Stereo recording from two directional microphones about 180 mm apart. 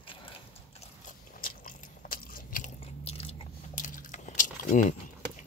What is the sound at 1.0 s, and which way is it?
Biting, 50° left (ahead or behind).